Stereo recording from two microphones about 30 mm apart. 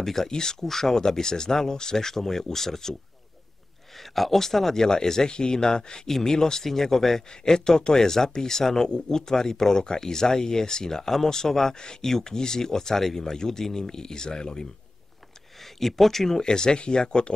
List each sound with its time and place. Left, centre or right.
0.0 s speech: centre
4.0 s speech: centre; by 6.0 s left
6.0 s speech: centre
15.6 s speech: centre
16.3 s speech: left